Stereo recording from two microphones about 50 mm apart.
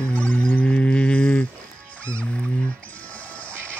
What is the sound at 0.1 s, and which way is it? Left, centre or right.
Music, left.